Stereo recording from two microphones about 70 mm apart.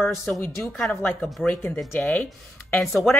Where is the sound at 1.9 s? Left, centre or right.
Left.